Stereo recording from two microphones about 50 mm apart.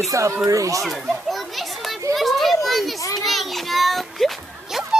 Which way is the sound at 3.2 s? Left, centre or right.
Centre.